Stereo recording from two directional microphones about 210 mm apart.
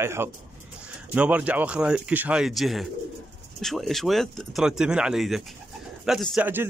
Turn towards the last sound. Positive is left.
turn(degrees=-10)  # may be behind; listen again after turning